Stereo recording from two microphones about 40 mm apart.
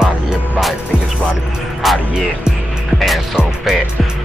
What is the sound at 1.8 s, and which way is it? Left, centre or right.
Music, centre.